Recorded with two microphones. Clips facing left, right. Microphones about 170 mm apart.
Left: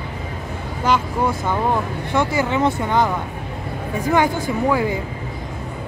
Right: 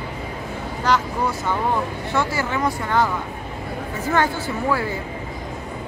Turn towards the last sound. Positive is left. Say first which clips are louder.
# left 4 dB
turn(degrees=15)  # may be behind; listen again after turning